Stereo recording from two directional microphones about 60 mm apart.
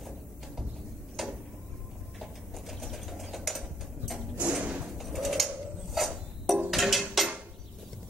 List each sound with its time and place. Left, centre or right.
1.2 s a sound: centre
2.1 s sewing machine: centre
4.4 s drawer open or close: right
4.9 s bird: centre
5.9 s a sound: centre
6.7 s music: centre